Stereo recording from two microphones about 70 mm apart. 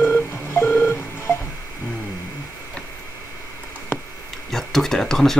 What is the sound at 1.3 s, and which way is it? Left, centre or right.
Music, left.